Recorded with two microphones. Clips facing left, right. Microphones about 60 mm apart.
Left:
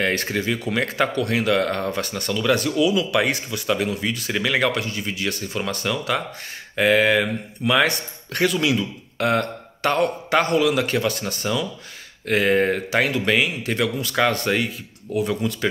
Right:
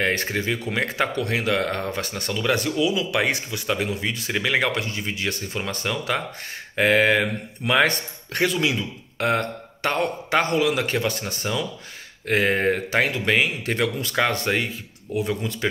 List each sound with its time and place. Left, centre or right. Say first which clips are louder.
0.0 s speech: left 1 dB; right
14.1 s speech: left 3 dB; centre